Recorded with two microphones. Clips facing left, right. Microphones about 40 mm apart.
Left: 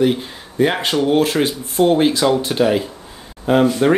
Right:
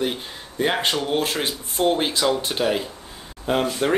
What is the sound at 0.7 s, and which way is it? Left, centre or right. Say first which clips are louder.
Speech: left 6 dB; centre.